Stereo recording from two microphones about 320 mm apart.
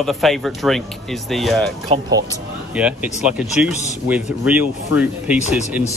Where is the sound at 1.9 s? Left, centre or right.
Centre.